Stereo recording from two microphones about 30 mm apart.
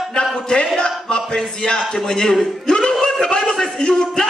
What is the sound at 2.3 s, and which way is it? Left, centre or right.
Speech, centre.